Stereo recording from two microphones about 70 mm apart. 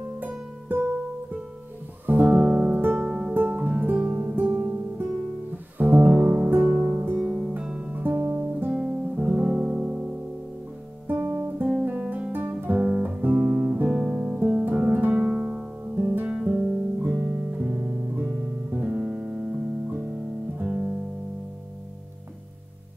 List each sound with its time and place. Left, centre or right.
0.2 s music: right
2.0 s music: right
3.1 s music: centre
3.3 s music: right
5.8 s music: right
8.3 s guitar: right
9.1 s music: centre
11.1 s guitar: right
12.8 s guitar: centre
13.9 s music: centre
16.1 s guitar: right
16.3 s music: centre
17.1 s music: right